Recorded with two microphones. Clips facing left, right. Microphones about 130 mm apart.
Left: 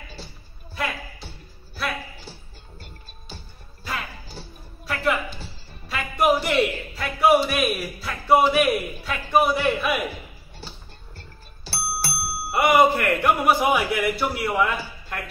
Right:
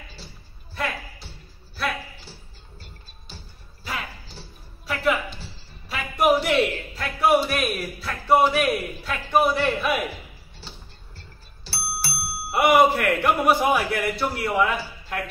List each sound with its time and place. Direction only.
4.8 s a sound: centre (ahead or behind)
11.7 s music: 50° left (ahead or behind)
12.4 s a man's voice: 5° right (ahead or behind)